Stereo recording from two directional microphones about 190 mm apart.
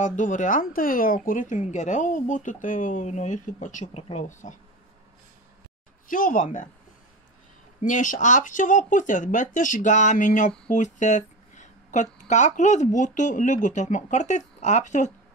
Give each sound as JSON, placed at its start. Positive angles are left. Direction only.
{"t": 0.0, "sound": "speech", "side_deg": 40}
{"t": 6.0, "sound": "speech", "side_deg": 45}
{"t": 7.8, "sound": "speech", "side_deg": 45}